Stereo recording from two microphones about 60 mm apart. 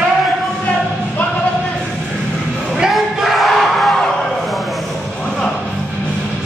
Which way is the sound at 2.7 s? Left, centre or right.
Centre.